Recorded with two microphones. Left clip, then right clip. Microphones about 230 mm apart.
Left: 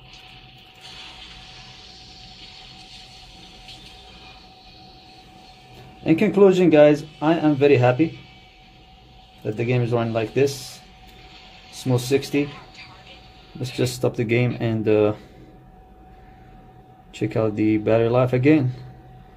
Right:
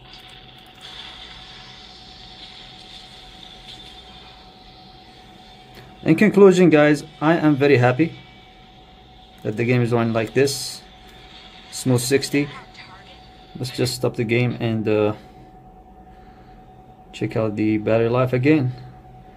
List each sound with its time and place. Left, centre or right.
6.0 s speech: centre
9.4 s speech: centre
12.1 s speech: centre
13.7 s a man's voice: centre
17.1 s a man's voice: centre